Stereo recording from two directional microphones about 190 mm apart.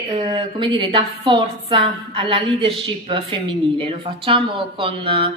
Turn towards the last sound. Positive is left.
turn(degrees=-30)  # may be behind; listen again after turning